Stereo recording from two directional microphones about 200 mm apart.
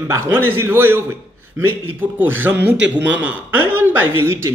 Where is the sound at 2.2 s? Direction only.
10° right (ahead or behind).